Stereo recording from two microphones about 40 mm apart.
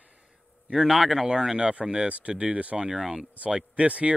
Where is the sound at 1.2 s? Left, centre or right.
Right.